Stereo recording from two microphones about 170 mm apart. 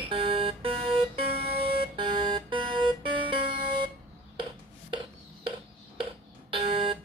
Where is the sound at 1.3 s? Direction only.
65° right (ahead or behind).